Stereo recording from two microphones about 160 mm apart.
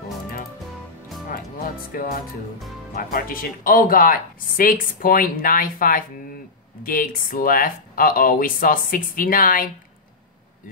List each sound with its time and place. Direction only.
2.9 s speech: 70° left (ahead or behind)